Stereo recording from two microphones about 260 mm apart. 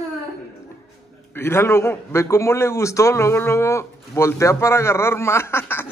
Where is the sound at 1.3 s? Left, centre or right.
Centre.